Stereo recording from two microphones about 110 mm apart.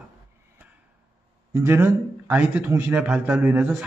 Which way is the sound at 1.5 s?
25° right (ahead or behind).